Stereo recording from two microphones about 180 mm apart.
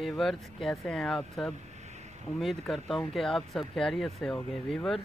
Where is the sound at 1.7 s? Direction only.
40° right (ahead or behind).